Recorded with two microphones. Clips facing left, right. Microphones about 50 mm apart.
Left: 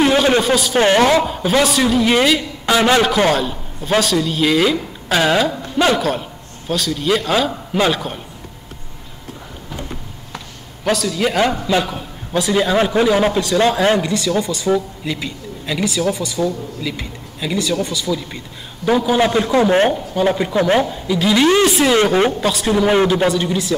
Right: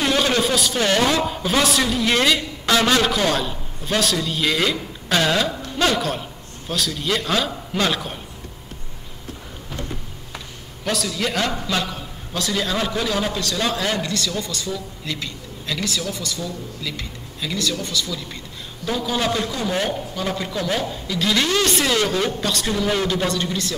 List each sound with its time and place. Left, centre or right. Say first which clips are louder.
0.0 s a sound: left 6 dB; centre
0.7 s speech: left 10 dB; left
1.2 s a man's voice: left 4 dB; centre
3.3 s a man's voice: left 4 dB; centre
10.8 s a man's voice: left 6 dB; centre; by 19.5 s left
19.5 s speech: left 10 dB; left
19.9 s a man's voice: left 8 dB; left
20.8 s speech: left 6 dB; centre
21.9 s a man's voice: left 7 dB; left
22.4 s speech: left 6 dB; centre
22.8 s a man's voice: left 9 dB; left
23.2 s speech: left 6 dB; centre